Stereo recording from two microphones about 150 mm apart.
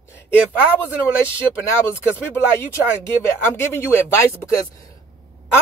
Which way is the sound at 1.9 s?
15° left (ahead or behind).